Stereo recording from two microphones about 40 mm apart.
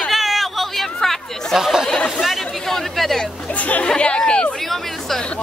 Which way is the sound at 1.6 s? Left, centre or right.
Centre.